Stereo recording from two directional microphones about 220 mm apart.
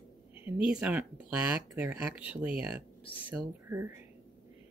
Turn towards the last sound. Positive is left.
turn(degrees=-10)  # may be behind; listen again after turning